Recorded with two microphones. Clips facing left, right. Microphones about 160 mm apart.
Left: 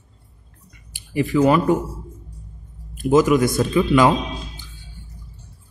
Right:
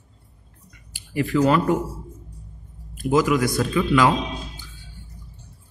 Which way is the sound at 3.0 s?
25° left (ahead or behind).